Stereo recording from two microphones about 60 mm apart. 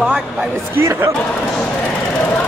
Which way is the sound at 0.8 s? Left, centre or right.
Right.